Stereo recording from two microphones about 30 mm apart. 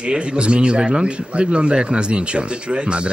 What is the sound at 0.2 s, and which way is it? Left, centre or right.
Speech, right.